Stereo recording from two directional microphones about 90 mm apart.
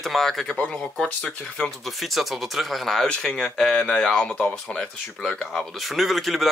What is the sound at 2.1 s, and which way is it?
Speech, centre (ahead or behind).